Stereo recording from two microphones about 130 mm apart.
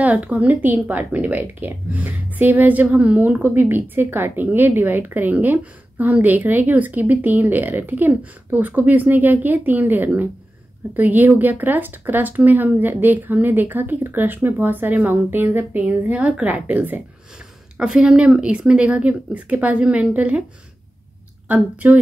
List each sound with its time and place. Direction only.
0.0 s a woman's voice: 10° right (ahead or behind)
21.5 s a woman's voice: 10° right (ahead or behind)